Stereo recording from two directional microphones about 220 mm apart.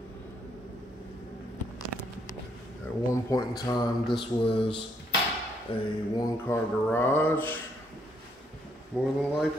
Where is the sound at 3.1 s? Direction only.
15° left (ahead or behind).